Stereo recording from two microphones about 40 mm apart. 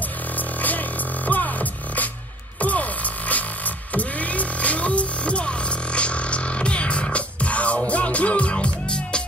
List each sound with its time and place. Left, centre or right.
0.6 s music: left